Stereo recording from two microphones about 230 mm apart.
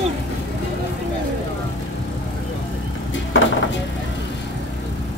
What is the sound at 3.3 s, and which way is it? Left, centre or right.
Music, left.